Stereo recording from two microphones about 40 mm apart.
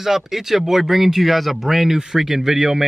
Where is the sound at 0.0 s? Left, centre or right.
Centre.